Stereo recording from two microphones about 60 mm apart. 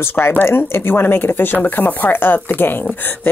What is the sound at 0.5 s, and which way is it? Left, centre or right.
Speech, left.